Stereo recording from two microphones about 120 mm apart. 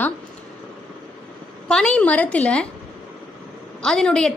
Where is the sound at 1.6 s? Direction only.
5° left (ahead or behind).